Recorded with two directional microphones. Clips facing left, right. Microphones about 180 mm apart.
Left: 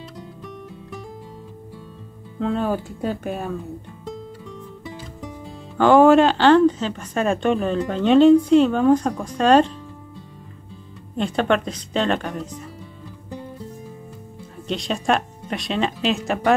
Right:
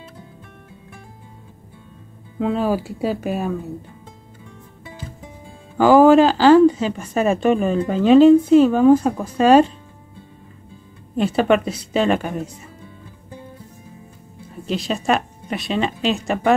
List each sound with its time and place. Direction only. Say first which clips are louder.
2.3 s a woman's voice: right 2 dB; 5° right (ahead or behind)
5.8 s speech: right 2 dB; 5° right (ahead or behind)
11.1 s a woman's voice: right 4 dB; 5° right (ahead or behind)
14.7 s speech: right 1 dB; centre (ahead or behind)